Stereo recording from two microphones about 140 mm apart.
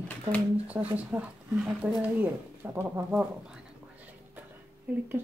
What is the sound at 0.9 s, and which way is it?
Speech, 10° right (ahead or behind).